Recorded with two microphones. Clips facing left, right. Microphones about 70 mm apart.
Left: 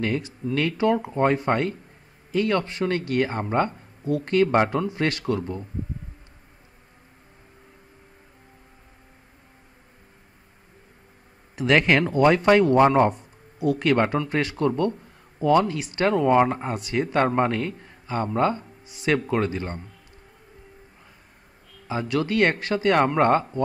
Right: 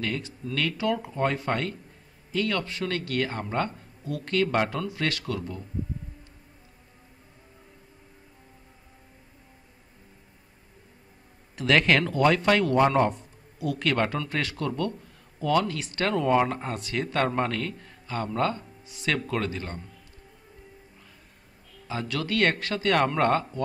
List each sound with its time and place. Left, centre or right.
0.4 s speech: left
11.5 s speech: centre
21.8 s speech: centre